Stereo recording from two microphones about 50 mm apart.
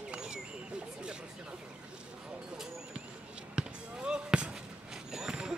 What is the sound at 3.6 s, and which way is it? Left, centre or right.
Basketball bounce, centre.